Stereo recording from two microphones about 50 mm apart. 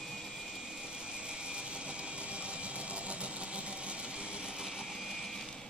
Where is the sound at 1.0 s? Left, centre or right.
Centre.